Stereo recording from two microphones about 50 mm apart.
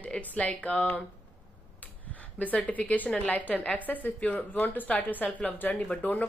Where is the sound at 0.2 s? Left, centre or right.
Left.